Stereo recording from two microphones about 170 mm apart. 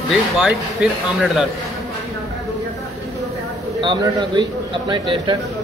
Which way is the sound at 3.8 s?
30° right (ahead or behind).